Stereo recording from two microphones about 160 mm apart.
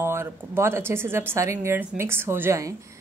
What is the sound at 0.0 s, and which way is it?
A woman's voice, 15° right (ahead or behind).